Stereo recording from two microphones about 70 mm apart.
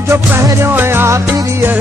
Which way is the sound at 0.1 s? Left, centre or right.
Right.